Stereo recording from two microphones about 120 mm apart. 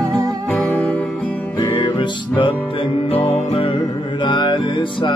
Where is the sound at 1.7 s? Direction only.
45° left (ahead or behind).